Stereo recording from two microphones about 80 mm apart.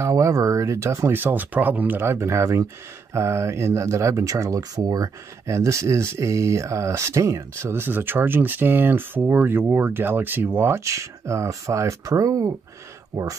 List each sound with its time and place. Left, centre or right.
0.0 s speech: right